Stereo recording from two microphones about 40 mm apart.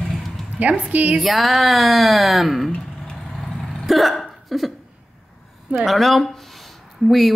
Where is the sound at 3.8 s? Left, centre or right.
Centre.